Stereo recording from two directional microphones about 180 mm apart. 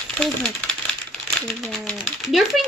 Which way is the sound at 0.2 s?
5° left (ahead or behind).